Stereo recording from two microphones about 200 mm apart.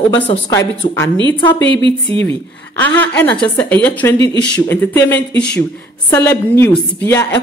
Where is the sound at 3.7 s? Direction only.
10° left (ahead or behind).